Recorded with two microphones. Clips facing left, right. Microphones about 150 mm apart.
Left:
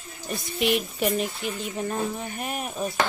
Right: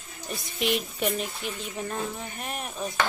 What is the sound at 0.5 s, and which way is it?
Speech, 5° left (ahead or behind).